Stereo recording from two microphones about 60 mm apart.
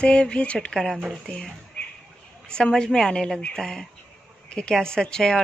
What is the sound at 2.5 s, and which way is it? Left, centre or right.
Speech, centre.